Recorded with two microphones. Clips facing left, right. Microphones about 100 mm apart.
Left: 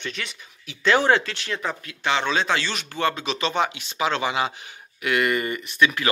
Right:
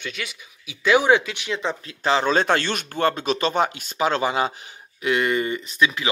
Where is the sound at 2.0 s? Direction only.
35° right (ahead or behind).